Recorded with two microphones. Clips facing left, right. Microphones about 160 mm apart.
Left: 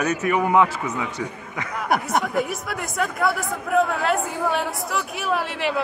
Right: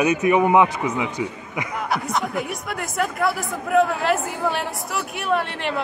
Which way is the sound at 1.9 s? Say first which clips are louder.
Left 4 dB; 50° left (ahead or behind).